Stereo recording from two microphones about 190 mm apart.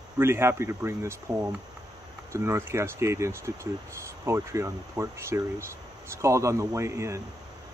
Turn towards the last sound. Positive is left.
turn(degrees=-15)  # may be behind; listen again after turning